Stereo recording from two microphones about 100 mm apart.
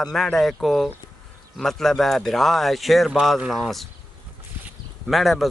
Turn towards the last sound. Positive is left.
turn(degrees=0)  # may be behind; listen again after turning